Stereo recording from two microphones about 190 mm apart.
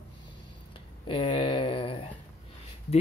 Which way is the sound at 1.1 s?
25° left (ahead or behind).